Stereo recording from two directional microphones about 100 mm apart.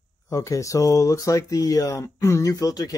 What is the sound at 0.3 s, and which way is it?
Speech, 30° left (ahead or behind).